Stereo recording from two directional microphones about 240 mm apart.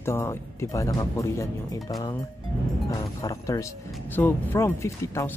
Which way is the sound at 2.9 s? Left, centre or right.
Centre.